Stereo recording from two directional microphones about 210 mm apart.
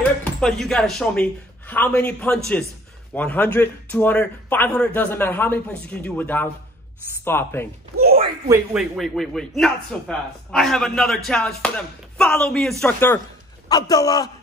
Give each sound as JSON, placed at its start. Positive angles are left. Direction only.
{"t": 0.2, "sound": "a man's voice", "side_deg": 5}
{"t": 8.5, "sound": "speech", "side_deg": -10}
{"t": 8.9, "sound": "a man's voice", "side_deg": 0}
{"t": 13.7, "sound": "a man's voice", "side_deg": 20}